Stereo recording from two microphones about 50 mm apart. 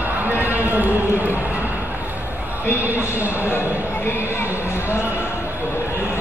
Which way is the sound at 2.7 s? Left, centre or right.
Right.